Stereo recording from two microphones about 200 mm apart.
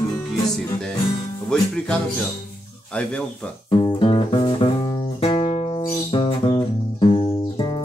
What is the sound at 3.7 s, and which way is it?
Music, 20° left (ahead or behind).